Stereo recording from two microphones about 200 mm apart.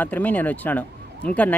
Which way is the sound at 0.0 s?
10° left (ahead or behind).